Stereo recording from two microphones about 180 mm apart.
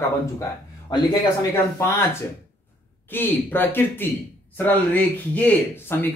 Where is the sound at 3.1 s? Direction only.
10° left (ahead or behind).